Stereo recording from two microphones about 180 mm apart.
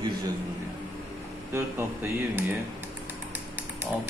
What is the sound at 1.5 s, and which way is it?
Speech, 15° right (ahead or behind).